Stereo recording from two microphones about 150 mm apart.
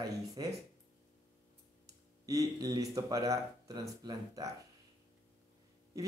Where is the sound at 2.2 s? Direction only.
25° right (ahead or behind).